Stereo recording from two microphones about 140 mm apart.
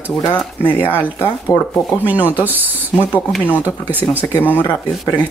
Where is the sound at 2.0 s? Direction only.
10° right (ahead or behind).